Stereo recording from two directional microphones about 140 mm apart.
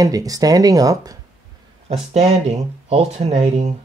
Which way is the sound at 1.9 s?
50° right (ahead or behind).